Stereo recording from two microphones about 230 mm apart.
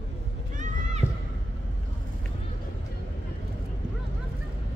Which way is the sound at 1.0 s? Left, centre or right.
Centre.